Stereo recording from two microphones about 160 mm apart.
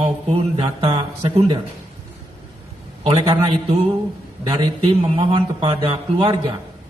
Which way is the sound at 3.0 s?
35° right (ahead or behind).